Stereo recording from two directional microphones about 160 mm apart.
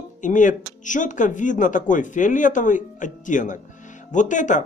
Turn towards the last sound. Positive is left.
turn(degrees=50)  # may be behind; listen again after turning